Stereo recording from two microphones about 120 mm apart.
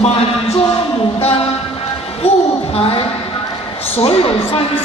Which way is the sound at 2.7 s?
55° left (ahead or behind).